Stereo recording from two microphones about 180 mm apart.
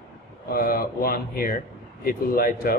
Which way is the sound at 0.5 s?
55° left (ahead or behind).